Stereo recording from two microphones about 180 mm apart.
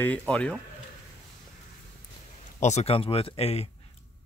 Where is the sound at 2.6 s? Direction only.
40° left (ahead or behind).